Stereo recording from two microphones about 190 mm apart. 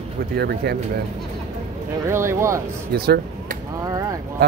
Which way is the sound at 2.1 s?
15° right (ahead or behind).